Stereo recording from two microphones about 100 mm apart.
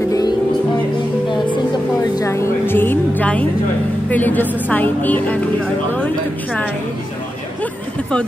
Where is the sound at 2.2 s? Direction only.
30° left (ahead or behind); by 8.2 s 10° left (ahead or behind).